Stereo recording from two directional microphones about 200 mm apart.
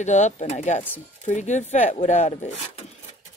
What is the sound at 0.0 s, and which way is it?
Speech, 35° left (ahead or behind).